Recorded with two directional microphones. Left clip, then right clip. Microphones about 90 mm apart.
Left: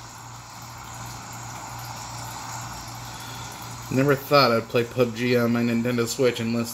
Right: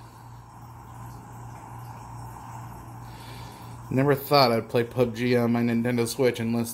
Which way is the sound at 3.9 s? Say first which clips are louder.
Left 2 dB; 10° right (ahead or behind).